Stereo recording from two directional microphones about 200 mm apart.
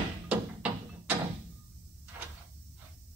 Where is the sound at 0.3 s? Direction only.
5° right (ahead or behind).